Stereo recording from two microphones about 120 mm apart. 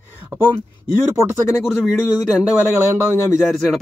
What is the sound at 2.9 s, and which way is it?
Speech, 15° right (ahead or behind).